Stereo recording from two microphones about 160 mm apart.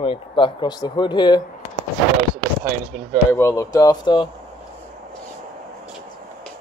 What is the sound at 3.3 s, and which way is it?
Speech, 20° left (ahead or behind).